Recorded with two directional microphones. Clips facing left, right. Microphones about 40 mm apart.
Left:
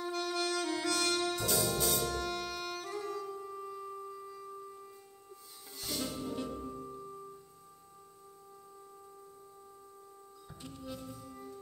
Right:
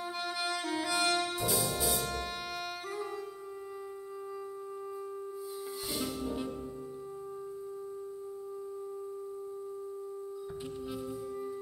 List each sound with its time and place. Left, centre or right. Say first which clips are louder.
0.0 s brass instrument: left 1 dB; centre
2.0 s music: left 1 dB; centre